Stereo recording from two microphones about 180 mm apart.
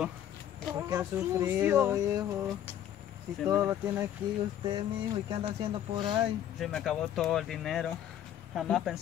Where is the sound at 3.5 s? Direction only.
15° right (ahead or behind).